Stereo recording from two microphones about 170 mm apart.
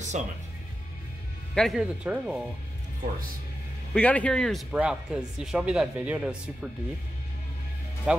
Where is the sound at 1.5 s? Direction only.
Centre (ahead or behind).